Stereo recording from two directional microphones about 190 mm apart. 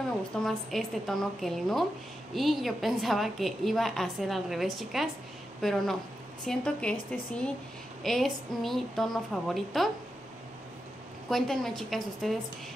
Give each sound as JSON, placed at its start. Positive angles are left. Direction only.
{"t": 0.4, "sound": "a woman's voice", "side_deg": 0}
{"t": 11.2, "sound": "a woman's voice", "side_deg": 0}